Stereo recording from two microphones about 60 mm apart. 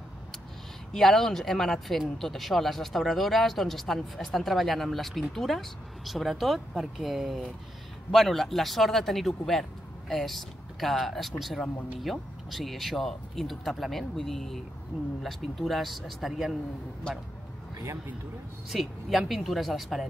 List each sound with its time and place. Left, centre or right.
0.9 s speech: centre
18.7 s speech: centre